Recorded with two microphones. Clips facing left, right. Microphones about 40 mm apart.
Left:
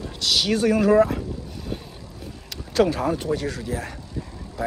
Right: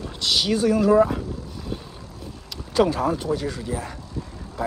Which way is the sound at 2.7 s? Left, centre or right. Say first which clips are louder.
Even; centre.